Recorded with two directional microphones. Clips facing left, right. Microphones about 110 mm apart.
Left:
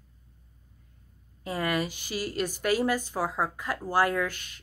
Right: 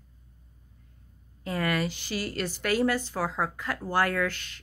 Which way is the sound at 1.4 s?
15° left (ahead or behind).